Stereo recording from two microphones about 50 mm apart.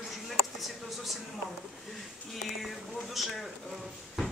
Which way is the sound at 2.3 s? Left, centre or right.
Centre.